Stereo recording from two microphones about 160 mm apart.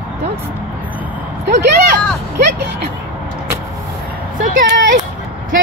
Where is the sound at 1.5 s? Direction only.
90° right.